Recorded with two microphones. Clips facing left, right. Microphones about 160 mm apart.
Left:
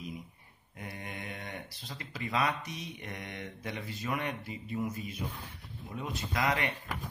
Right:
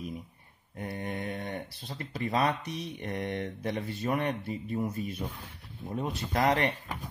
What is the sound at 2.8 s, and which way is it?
Speech, 35° right (ahead or behind).